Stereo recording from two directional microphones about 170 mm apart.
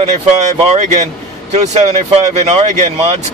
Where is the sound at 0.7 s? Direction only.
45° right (ahead or behind).